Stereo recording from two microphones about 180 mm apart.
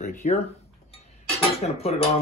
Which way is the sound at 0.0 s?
45° left (ahead or behind).